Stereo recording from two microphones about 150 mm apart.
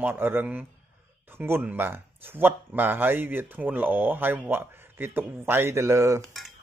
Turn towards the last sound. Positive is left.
turn(degrees=-20)  # may be behind; listen again after turning